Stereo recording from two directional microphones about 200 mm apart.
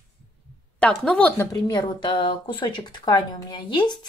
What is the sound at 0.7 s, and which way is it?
Speech, 5° left (ahead or behind).